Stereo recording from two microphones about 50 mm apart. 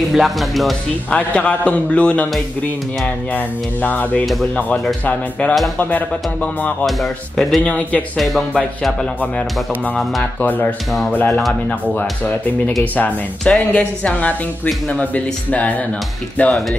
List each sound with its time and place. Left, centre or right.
0.1 s speech: centre
1.1 s speech: left
3.3 s speech: left
5.4 s speech: left
6.9 s speech: centre
7.6 s speech: left
10.4 s speech: left
13.4 s speech: left